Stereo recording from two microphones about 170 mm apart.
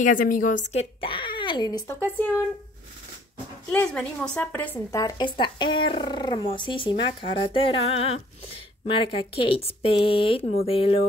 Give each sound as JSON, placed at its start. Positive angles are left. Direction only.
{"t": 0.0, "sound": "a woman's voice", "side_deg": 50}
{"t": 0.7, "sound": "speech", "side_deg": 30}
{"t": 2.0, "sound": "a woman's voice", "side_deg": 10}
{"t": 3.7, "sound": "speech", "side_deg": 5}